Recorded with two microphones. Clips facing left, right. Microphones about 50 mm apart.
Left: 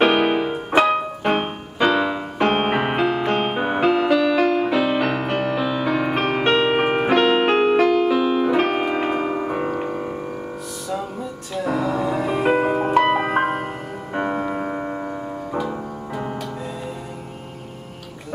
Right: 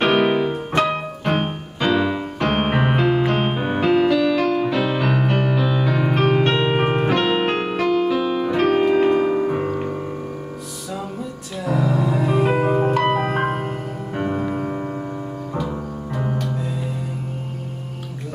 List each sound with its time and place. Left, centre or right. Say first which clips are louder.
0.0 s keyboard: even; centre
11.5 s music: even; centre
14.1 s music: left 1 dB; centre
16.2 s music: right 3 dB; centre